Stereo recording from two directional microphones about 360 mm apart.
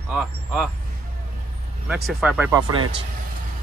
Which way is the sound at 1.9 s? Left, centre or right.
Centre.